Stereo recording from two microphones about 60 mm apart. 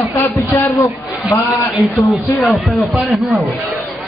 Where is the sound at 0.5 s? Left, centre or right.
Left.